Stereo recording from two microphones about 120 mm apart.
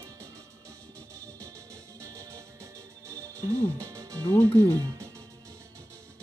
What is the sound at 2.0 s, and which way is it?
Music, 25° right (ahead or behind).